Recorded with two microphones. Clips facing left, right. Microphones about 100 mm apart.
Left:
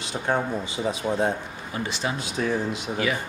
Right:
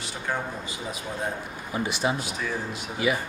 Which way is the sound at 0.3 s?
50° left (ahead or behind).